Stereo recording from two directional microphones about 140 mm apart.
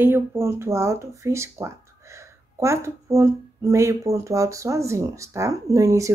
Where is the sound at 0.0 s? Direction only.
15° right (ahead or behind).